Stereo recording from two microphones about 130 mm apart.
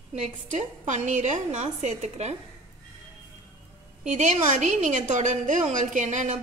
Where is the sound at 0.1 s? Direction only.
65° right (ahead or behind).